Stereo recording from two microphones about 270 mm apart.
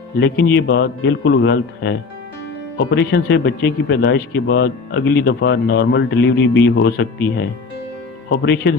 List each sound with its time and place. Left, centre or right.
0.2 s speech: left
8.3 s speech: left